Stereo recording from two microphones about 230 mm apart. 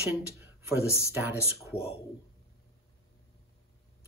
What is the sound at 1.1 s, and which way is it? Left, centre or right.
Speech, centre.